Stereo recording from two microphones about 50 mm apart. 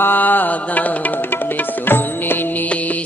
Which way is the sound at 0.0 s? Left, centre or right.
Left.